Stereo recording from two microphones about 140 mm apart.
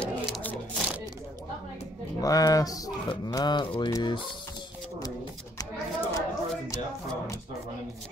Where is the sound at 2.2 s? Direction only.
25° left (ahead or behind).